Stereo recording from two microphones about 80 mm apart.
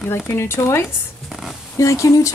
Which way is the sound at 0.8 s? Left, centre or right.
Centre.